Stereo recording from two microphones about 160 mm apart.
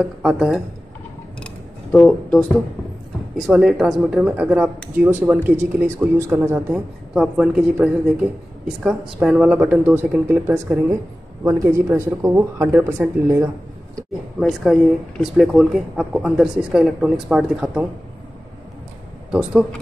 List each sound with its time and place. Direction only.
0.0 s speech: centre (ahead or behind)
1.4 s a sound: 10° left (ahead or behind)
3.4 s speech: 5° right (ahead or behind)
14.4 s speech: 5° left (ahead or behind)